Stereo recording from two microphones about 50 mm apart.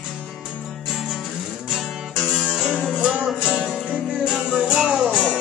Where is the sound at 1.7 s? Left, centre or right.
Centre.